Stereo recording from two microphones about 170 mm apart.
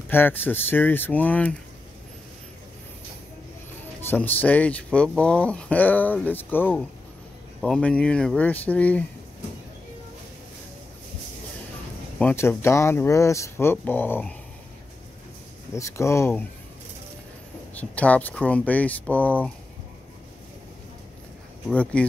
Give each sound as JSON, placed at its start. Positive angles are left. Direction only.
{"t": 0.1, "sound": "speech", "side_deg": 10}
{"t": 4.1, "sound": "speech", "side_deg": 10}
{"t": 12.2, "sound": "speech", "side_deg": 10}
{"t": 15.7, "sound": "speech", "side_deg": 15}
{"t": 17.7, "sound": "speech", "side_deg": 10}
{"t": 21.6, "sound": "speech", "side_deg": 5}